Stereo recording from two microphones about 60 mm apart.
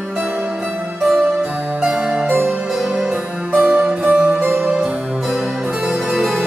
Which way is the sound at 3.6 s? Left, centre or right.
Centre.